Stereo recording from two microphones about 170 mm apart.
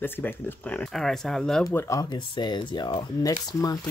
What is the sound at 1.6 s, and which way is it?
Speech, 15° left (ahead or behind).